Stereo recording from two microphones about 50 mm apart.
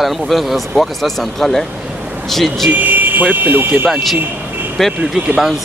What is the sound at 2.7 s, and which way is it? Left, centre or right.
Speech, right.